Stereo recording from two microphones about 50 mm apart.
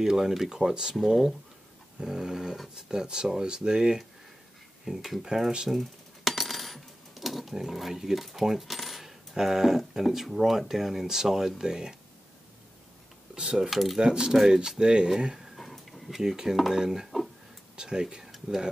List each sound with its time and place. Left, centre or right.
0.0 s speech: centre
5.8 s coin: centre
13.4 s speech: centre
13.7 s speech: centre
13.9 s speech: centre
15.5 s a sound: centre
16.2 s speech: centre